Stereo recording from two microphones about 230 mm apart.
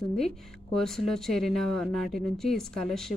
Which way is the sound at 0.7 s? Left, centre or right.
Centre.